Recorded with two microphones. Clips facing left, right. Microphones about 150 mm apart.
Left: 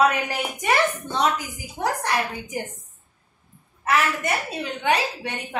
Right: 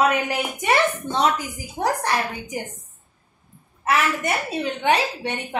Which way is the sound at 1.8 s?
35° right (ahead or behind).